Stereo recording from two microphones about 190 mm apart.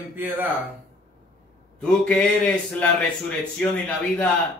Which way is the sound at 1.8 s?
5° left (ahead or behind).